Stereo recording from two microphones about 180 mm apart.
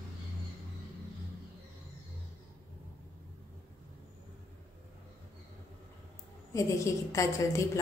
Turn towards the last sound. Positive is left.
turn(degrees=15)  # may be behind; listen again after turning